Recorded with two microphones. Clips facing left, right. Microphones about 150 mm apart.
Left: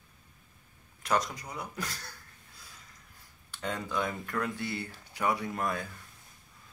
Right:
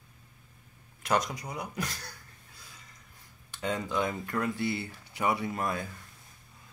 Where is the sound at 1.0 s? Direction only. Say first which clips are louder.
Right 1 dB; 10° right (ahead or behind).